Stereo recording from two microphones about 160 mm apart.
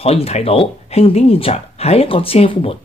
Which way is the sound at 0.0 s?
40° left (ahead or behind).